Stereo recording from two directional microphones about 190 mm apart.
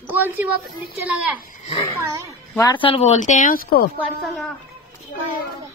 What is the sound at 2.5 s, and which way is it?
Speech, 20° left (ahead or behind).